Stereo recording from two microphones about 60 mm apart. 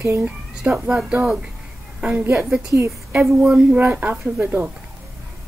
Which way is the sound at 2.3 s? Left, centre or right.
Centre.